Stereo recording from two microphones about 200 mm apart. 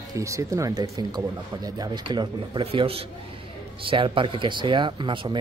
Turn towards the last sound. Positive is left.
turn(degrees=-25)  # may be behind; listen again after turning